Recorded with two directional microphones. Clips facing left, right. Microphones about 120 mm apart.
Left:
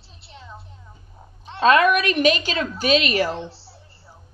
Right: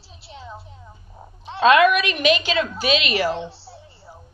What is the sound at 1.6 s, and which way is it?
A woman's voice, 35° left (ahead or behind).